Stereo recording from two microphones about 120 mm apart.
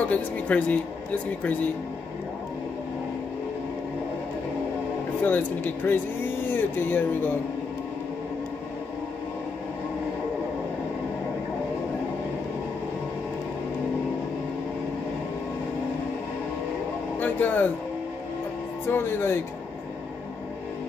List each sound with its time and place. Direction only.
0.1 s speech: 10° left (ahead or behind)
5.2 s speech: 15° left (ahead or behind)
17.2 s a sound: 15° left (ahead or behind)
18.9 s speech: 20° left (ahead or behind)